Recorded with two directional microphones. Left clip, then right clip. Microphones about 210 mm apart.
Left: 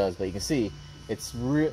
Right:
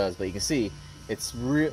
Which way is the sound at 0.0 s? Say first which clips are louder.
Even; 30° left (ahead or behind).